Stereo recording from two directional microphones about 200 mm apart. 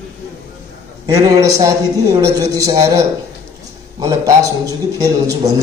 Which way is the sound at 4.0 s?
15° right (ahead or behind).